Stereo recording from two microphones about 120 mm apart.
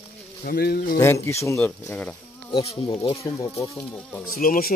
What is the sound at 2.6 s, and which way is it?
Bee, 50° left (ahead or behind).